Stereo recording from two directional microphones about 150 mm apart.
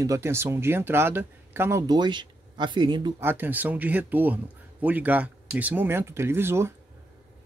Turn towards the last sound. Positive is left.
turn(degrees=-15)  # may be behind; listen again after turning